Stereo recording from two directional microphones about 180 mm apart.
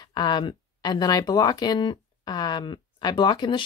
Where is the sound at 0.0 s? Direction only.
25° left (ahead or behind).